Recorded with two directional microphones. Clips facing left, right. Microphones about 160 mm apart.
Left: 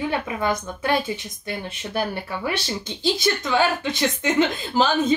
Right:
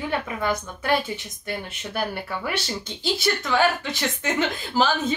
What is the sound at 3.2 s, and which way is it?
Speech, 15° left (ahead or behind).